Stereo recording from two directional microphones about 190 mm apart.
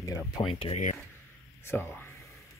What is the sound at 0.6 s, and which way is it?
Speech, 35° left (ahead or behind).